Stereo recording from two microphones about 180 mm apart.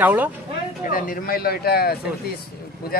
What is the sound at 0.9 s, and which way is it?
Speech, 50° left (ahead or behind).